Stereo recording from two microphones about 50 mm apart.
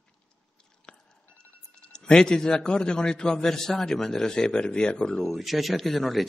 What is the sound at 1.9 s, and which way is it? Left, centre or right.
A man's voice, centre.